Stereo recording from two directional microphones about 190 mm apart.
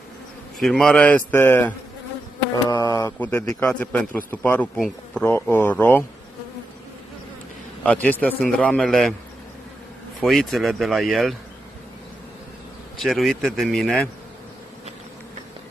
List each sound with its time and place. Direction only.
0.6 s a man's voice: centre (ahead or behind)
7.8 s a man's voice: 5° left (ahead or behind)
10.2 s speech: centre (ahead or behind)
12.9 s speech: centre (ahead or behind)